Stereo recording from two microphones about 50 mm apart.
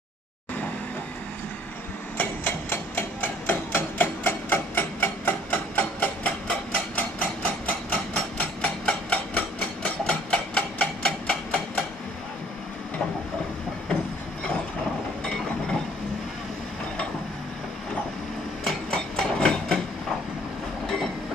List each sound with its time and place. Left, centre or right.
2.1 s a sound: left
6.2 s hammer: left
15.2 s mechanisms: centre
18.9 s hammer: centre
20.8 s train: centre